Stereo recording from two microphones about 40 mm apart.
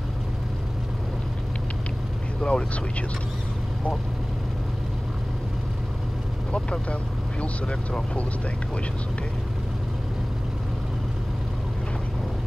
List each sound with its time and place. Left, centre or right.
2.4 s speech: left
6.5 s speech: left